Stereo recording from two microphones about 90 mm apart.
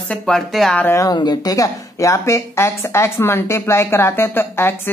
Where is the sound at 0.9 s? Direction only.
45° left (ahead or behind).